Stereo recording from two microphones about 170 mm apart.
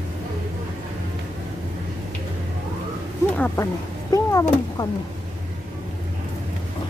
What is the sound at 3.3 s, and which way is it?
Speech, 10° left (ahead or behind).